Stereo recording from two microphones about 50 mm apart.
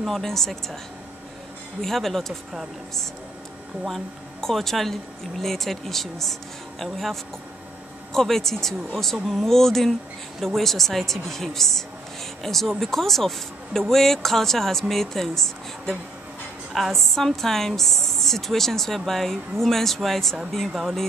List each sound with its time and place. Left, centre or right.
0.0 s a woman's voice: centre
1.8 s a woman's voice: centre
3.9 s a woman's voice: centre